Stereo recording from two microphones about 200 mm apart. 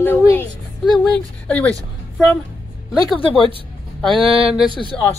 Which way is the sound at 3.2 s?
25° left (ahead or behind).